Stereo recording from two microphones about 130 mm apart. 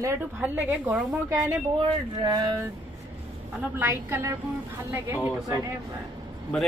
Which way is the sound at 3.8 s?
20° right (ahead or behind).